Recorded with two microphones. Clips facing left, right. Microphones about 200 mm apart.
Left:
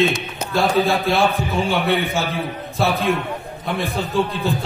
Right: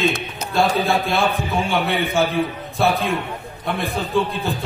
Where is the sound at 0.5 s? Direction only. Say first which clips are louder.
Left 1 dB; centre (ahead or behind).